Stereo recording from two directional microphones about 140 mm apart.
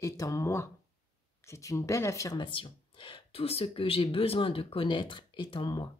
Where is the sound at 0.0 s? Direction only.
20° left (ahead or behind).